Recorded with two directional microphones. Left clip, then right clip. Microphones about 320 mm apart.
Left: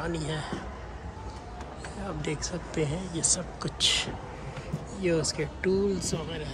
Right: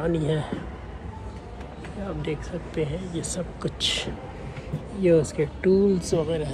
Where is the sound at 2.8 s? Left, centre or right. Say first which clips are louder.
Right 2 dB; left.